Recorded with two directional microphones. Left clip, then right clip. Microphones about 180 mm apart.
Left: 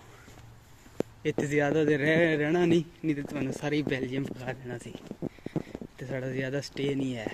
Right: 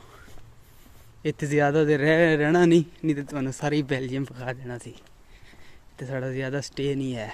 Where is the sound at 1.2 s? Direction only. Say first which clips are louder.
Right 4 dB; 25° right (ahead or behind).